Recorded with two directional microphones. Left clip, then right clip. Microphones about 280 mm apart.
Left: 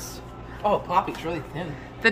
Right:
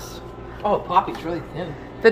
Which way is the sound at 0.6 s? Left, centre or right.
Left.